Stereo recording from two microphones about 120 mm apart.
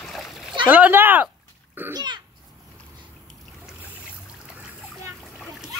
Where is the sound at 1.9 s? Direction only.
35° right (ahead or behind).